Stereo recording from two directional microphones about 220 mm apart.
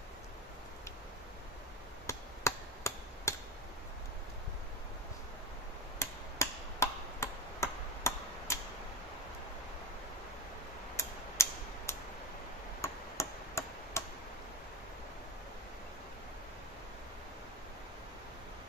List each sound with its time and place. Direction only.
2.0 s chop: 15° left (ahead or behind)
5.9 s chop: 15° left (ahead or behind)
11.0 s a sound: 10° left (ahead or behind)
12.8 s tick-tock: 15° left (ahead or behind)